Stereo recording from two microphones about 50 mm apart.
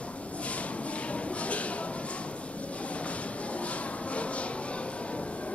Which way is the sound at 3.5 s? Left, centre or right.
Left.